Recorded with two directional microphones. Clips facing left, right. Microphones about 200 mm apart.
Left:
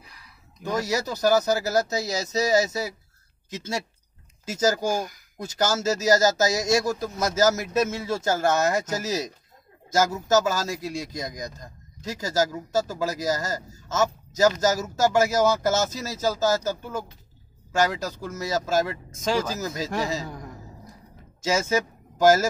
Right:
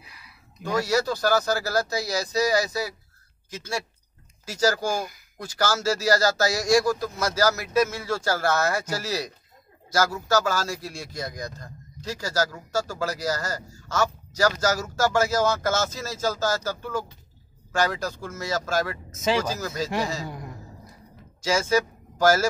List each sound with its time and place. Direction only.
0.0 s a sound: 10° right (ahead or behind)
0.7 s a man's voice: 20° left (ahead or behind)
21.4 s speech: 20° left (ahead or behind)